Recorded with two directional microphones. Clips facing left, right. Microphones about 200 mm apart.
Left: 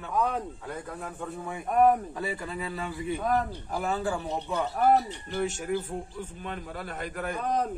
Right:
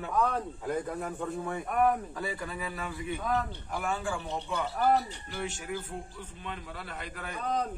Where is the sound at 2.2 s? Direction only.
25° left (ahead or behind); by 5.7 s 40° left (ahead or behind).